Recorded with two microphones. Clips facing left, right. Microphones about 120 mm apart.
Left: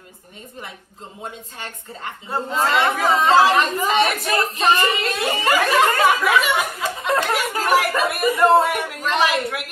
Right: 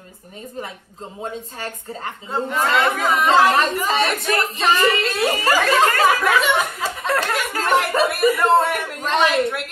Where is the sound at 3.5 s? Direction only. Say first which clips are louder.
Even; 35° right (ahead or behind).